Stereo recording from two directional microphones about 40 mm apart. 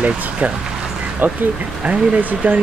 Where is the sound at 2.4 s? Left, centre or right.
Right.